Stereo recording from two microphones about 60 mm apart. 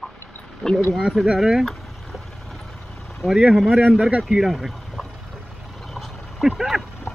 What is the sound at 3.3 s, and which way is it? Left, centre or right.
Speech, centre.